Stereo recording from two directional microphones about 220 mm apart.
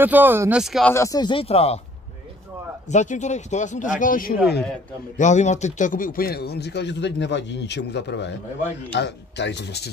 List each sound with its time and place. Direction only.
0.0 s speech: 10° right (ahead or behind)
0.9 s speech: 15° left (ahead or behind)
2.9 s speech: 35° left (ahead or behind); by 9.8 s 50° left (ahead or behind)